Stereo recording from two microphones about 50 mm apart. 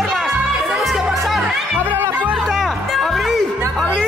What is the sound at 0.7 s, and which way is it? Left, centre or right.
Music, centre.